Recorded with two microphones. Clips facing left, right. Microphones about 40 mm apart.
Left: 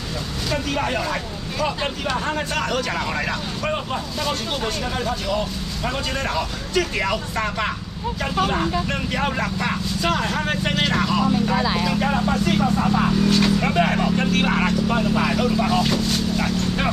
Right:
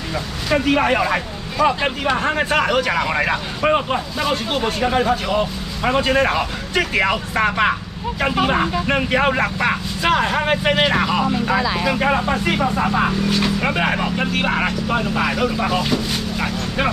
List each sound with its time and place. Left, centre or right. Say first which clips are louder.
0.5 s speech: right 7 dB; right